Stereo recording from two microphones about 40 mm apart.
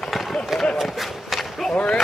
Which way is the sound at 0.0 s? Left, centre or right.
Centre.